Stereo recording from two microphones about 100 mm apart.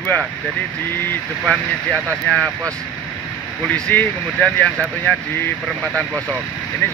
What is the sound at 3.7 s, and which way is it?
Speech, 10° left (ahead or behind).